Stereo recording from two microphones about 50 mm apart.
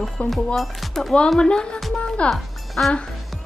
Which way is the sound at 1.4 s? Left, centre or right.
Centre.